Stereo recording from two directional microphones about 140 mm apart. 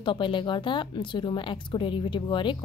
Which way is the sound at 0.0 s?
35° left (ahead or behind).